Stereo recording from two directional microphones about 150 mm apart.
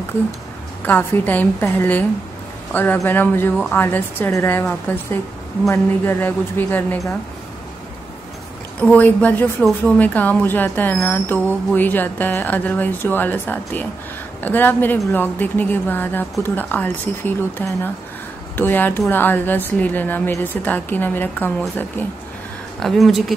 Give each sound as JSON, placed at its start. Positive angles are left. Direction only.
{"t": 0.8, "sound": "a woman's voice", "side_deg": 10}
{"t": 8.8, "sound": "a woman's voice", "side_deg": 10}
{"t": 22.8, "sound": "speech", "side_deg": 0}